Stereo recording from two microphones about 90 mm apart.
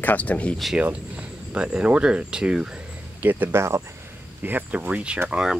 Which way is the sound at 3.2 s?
20° right (ahead or behind).